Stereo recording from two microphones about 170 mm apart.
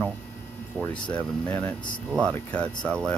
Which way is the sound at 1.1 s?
10° left (ahead or behind).